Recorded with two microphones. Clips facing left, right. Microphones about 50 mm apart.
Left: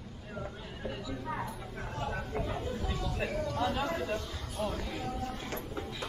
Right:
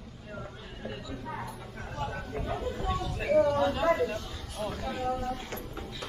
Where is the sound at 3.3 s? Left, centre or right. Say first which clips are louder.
Right 11 dB; right.